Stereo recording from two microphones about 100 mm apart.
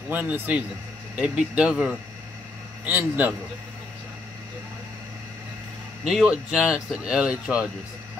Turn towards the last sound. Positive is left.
turn(degrees=-5)  # may be behind; listen again after turning